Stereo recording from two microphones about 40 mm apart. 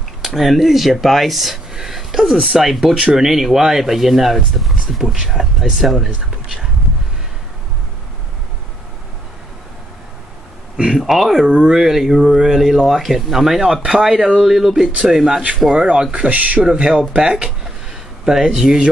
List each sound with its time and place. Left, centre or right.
0.2 s speech: centre
1.7 s a sound: centre
2.5 s speech: centre
6.0 s speech: right
11.0 s speech: centre
11.4 s speech: right
11.7 s speech: centre; by 16.3 s right
16.3 s speech: right
16.5 s speech: right